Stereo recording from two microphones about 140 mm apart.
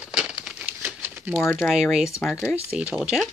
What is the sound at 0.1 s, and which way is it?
Crumpling, 5° right (ahead or behind).